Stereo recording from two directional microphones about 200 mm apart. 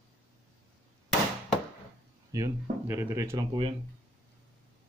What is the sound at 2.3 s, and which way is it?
Speech, 15° right (ahead or behind).